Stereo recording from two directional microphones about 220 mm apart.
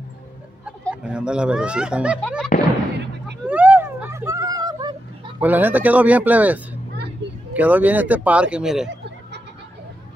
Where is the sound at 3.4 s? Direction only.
5° right (ahead or behind).